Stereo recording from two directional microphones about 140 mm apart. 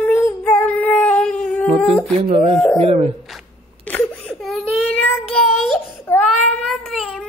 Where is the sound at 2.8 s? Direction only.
50° right (ahead or behind).